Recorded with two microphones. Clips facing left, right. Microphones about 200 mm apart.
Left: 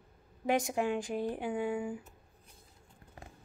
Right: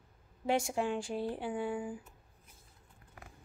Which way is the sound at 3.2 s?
25° left (ahead or behind).